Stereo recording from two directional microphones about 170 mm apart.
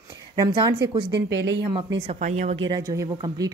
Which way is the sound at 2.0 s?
40° right (ahead or behind).